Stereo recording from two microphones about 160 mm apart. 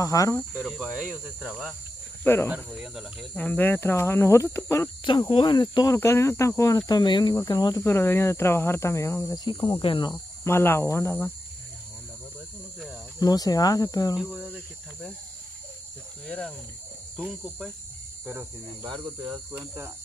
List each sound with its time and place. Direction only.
0.0 s speech: 20° left (ahead or behind)
0.6 s speech: 5° right (ahead or behind)
2.2 s speech: 15° left (ahead or behind)
2.5 s speech: 5° right (ahead or behind); by 4.8 s 15° left (ahead or behind)
5.0 s speech: 30° left (ahead or behind)
10.4 s speech: 15° left (ahead or behind)
13.2 s speech: 25° left (ahead or behind)
14.1 s speech: 5° right (ahead or behind)
16.3 s speech: 5° left (ahead or behind)
18.2 s speech: 10° right (ahead or behind)